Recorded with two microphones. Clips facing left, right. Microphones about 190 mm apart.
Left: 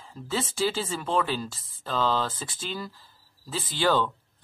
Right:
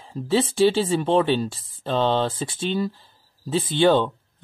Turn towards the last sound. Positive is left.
turn(degrees=-25)  # may be behind; listen again after turning